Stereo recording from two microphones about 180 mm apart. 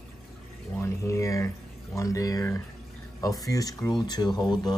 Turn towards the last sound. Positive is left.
turn(degrees=25)  # may be behind; listen again after turning